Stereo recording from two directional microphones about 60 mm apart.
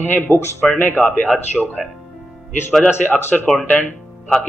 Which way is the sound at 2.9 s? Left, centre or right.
Left.